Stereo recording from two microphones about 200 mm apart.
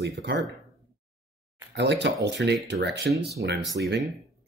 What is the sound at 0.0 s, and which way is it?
Speech, 55° right (ahead or behind).